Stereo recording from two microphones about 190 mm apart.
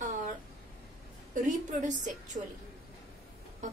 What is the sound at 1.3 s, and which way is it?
A woman's voice, 40° right (ahead or behind).